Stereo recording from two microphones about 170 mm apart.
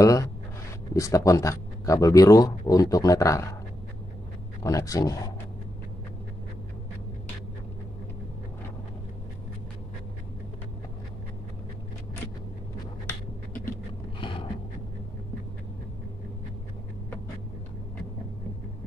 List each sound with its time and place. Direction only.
0.0 s speech: 20° left (ahead or behind)
4.6 s speech: 20° left (ahead or behind)